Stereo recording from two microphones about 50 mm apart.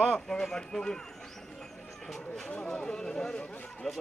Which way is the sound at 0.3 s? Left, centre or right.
Centre.